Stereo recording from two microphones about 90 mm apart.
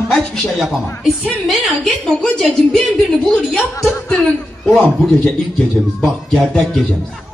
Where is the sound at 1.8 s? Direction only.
5° left (ahead or behind).